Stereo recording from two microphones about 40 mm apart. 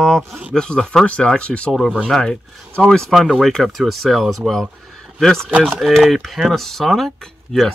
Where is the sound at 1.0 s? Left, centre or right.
Left.